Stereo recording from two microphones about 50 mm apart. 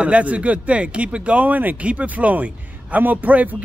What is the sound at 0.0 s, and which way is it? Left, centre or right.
A man's voice, right.